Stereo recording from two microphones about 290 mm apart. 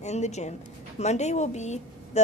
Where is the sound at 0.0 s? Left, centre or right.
Left.